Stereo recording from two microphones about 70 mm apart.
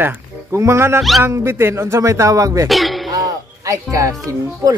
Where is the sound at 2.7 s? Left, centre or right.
Centre.